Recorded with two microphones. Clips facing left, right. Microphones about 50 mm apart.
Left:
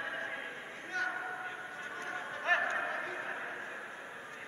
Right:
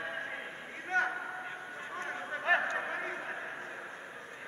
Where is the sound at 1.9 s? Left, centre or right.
Right.